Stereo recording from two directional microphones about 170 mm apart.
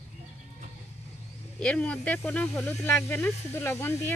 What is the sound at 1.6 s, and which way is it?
Speech, 5° left (ahead or behind).